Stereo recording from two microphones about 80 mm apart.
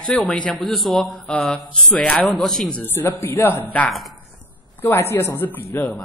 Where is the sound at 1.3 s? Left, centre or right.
Centre.